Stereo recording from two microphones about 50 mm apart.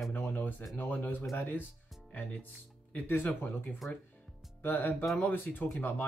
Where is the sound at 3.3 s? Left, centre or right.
Left.